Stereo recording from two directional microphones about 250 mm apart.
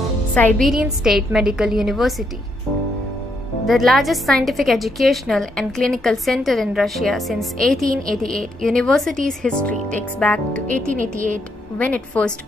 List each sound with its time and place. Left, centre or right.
0.3 s a woman's voice: centre
3.6 s a woman's voice: centre
10.7 s speech: right
11.8 s a woman's voice: centre